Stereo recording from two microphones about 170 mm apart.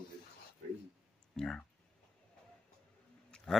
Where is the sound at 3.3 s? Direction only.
5° left (ahead or behind).